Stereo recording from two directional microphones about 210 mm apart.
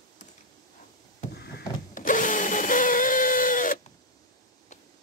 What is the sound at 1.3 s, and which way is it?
Drill, 50° left (ahead or behind).